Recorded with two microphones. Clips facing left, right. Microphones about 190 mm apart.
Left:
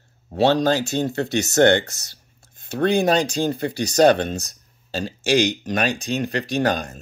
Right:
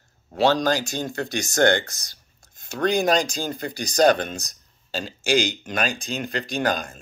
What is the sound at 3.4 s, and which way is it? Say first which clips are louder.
Speech: left 6 dB; 25° left (ahead or behind).